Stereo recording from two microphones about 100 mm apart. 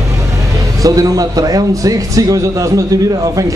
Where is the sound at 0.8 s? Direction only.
35° right (ahead or behind).